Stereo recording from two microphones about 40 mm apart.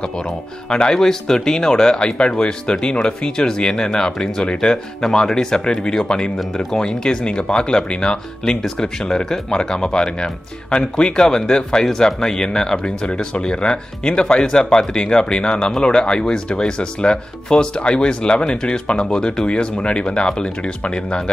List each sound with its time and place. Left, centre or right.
0.7 s speech: centre